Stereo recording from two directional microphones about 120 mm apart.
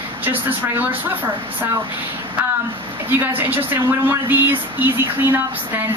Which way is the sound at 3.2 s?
15° right (ahead or behind).